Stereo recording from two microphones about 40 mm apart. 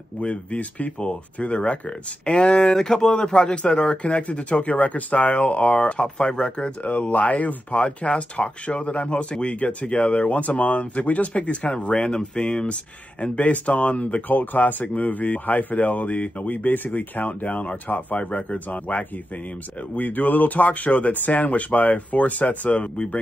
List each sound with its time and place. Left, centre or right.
0.2 s speech: left
5.9 s speech: left
6.8 s speech: left
12.0 s speech: left
13.2 s speech: left
14.2 s speech: left